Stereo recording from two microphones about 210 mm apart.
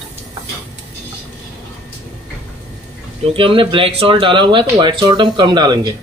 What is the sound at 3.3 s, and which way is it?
Speech, 25° right (ahead or behind).